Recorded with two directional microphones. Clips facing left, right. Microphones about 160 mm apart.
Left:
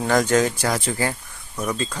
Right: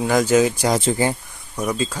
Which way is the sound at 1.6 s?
10° right (ahead or behind).